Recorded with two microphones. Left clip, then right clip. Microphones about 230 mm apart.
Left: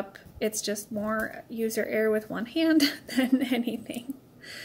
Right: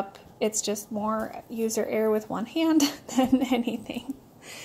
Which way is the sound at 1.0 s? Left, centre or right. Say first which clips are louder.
Right 1 dB; right.